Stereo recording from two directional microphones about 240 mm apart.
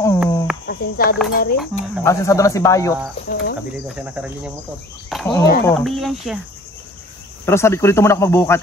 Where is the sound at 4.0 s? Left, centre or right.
Centre.